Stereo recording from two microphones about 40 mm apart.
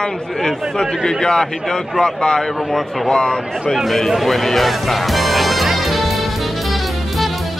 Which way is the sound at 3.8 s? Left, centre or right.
Centre.